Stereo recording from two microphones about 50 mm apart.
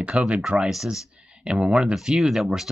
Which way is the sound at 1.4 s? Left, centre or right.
Centre.